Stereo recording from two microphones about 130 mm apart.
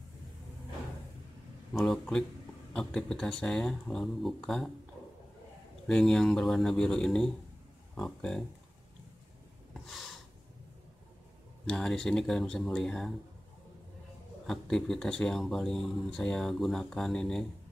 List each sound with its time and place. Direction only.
1.7 s speech: 5° left (ahead or behind)
5.9 s speech: 5° left (ahead or behind)
9.8 s a sound: centre (ahead or behind)
11.6 s speech: 5° left (ahead or behind)
14.4 s speech: 5° left (ahead or behind)